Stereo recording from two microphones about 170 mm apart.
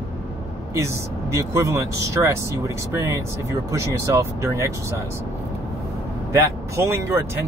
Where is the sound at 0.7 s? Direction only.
15° right (ahead or behind).